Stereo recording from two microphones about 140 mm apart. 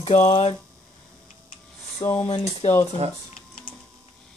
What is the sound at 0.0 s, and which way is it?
Speech, 50° left (ahead or behind).